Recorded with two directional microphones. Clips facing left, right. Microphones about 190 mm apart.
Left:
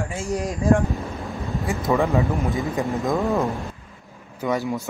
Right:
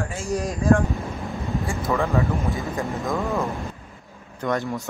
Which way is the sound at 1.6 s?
20° left (ahead or behind).